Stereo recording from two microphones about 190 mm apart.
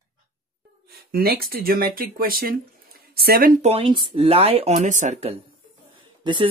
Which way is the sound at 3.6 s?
30° right (ahead or behind).